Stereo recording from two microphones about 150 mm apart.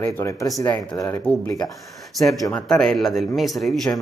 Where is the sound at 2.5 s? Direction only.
5° left (ahead or behind).